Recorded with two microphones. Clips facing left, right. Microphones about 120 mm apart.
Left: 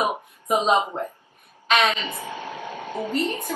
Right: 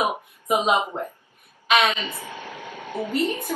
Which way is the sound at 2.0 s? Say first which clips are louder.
Left 3 dB; 20° left (ahead or behind).